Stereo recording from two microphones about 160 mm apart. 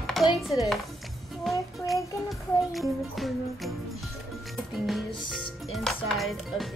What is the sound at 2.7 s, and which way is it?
Speech, centre (ahead or behind).